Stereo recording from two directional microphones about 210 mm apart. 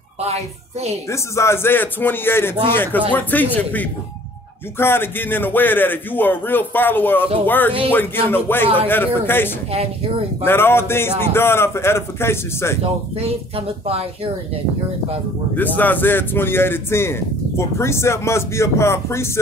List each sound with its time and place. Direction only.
0.2 s a woman's voice: 30° right (ahead or behind)
1.1 s a man's voice: 15° left (ahead or behind)
13.2 s a woman's voice: 30° right (ahead or behind)
15.5 s a man's voice: 10° left (ahead or behind)